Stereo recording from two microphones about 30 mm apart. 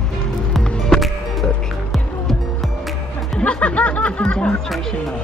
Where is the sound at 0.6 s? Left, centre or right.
Left.